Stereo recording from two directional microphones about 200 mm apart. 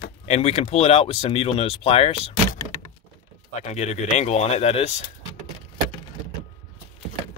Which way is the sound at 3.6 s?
35° left (ahead or behind).